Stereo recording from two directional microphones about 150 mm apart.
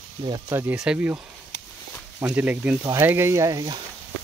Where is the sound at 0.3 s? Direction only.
15° right (ahead or behind).